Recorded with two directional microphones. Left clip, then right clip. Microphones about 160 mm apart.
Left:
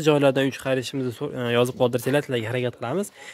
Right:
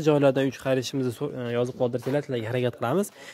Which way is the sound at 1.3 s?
25° left (ahead or behind).